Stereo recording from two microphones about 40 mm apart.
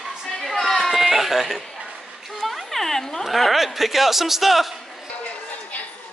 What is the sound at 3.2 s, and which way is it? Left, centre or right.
A man's voice, centre.